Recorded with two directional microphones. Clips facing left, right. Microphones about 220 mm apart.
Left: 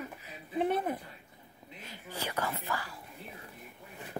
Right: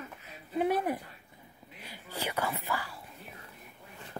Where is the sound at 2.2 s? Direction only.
15° right (ahead or behind).